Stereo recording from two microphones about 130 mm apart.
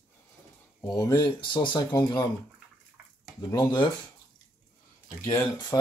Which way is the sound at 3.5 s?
30° left (ahead or behind).